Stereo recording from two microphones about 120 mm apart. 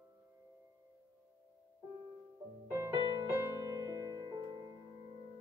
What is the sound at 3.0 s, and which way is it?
Music, 40° right (ahead or behind).